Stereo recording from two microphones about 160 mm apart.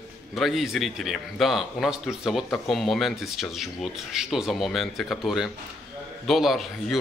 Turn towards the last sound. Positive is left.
turn(degrees=0)  # may be behind; listen again after turning